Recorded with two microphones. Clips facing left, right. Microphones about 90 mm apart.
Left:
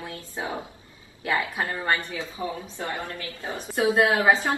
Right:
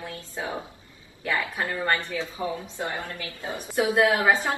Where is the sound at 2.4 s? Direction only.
20° right (ahead or behind).